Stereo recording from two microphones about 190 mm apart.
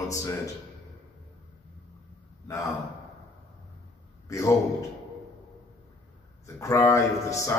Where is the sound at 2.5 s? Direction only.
15° left (ahead or behind).